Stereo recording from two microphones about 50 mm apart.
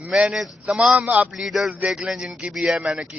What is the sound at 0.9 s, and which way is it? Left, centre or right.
Speech, right.